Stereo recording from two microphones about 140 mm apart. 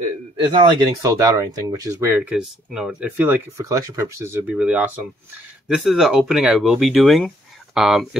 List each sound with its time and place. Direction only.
0.5 s speech: 35° right (ahead or behind); by 3.3 s 10° right (ahead or behind)
3.5 s speech: 25° right (ahead or behind); by 8.2 s centre (ahead or behind)